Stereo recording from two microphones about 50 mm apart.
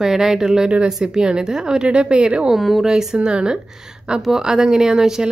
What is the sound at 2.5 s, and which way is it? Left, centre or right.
Speech, centre.